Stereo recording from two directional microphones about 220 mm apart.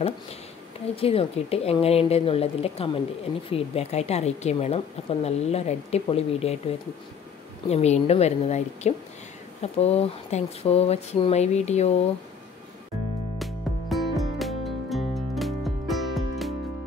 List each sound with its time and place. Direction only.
0.9 s a woman's voice: 25° left (ahead or behind)
7.6 s a woman's voice: 30° left (ahead or behind)
13.4 s music: centre (ahead or behind)